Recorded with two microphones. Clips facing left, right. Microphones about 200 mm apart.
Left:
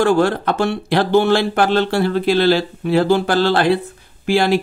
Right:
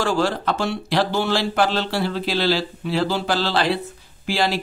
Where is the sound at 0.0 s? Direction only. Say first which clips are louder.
Left 6 dB; 55° left (ahead or behind).